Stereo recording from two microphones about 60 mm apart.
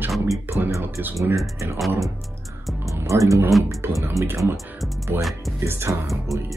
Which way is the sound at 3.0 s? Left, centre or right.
Right.